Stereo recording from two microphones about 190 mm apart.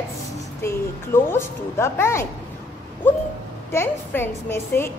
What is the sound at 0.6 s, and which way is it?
A woman's voice, 10° left (ahead or behind).